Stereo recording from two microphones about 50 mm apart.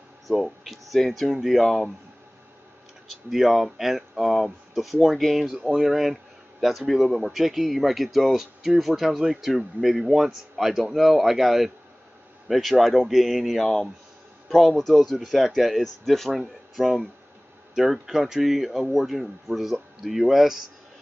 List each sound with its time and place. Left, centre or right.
0.3 s speech: centre
3.3 s speech: centre